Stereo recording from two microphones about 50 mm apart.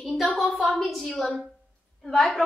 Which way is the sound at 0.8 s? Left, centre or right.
Centre.